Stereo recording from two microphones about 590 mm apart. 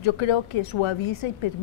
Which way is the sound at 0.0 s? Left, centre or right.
Left.